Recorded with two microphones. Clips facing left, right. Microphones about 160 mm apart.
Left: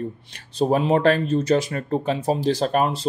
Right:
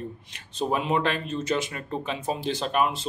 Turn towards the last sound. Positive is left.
turn(degrees=40)  # may be behind; listen again after turning